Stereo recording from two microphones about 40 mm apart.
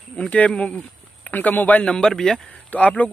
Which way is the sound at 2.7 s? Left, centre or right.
Left.